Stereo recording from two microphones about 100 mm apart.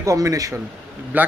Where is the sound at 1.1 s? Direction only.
15° right (ahead or behind).